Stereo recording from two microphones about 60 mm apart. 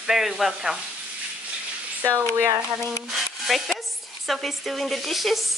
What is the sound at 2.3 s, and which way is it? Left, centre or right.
Speech, right.